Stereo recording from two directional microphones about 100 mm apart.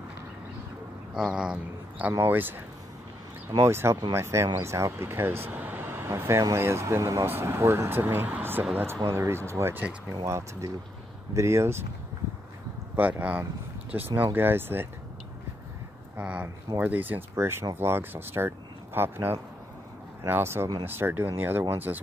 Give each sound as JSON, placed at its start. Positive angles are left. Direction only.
{"t": 1.1, "sound": "a sound", "side_deg": -5}
{"t": 2.1, "sound": "speech", "side_deg": -20}
{"t": 12.9, "sound": "speech", "side_deg": -20}
{"t": 16.2, "sound": "speech", "side_deg": -15}